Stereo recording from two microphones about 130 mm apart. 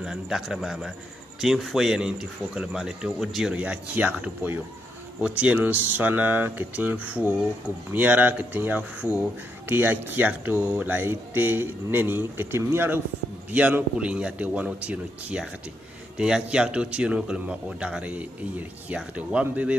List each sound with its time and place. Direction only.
0.0 s a man's voice: 5° right (ahead or behind)